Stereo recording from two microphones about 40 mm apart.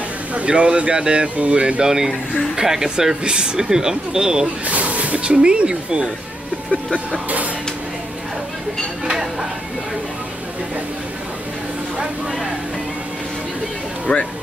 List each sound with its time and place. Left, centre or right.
0.5 s speech: right
1.8 s speech: centre
4.6 s speech: right
14.1 s speech: left